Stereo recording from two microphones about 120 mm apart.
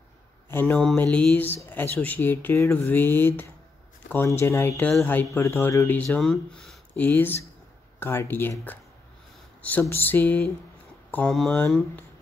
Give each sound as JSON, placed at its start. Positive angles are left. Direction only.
{"t": 0.5, "sound": "speech", "side_deg": 15}
{"t": 5.9, "sound": "speech", "side_deg": 5}
{"t": 6.9, "sound": "speech", "side_deg": 15}